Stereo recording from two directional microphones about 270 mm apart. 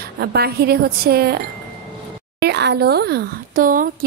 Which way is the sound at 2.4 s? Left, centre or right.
Right.